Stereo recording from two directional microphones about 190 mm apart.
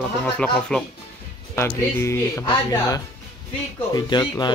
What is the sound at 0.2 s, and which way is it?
Speech, 5° left (ahead or behind).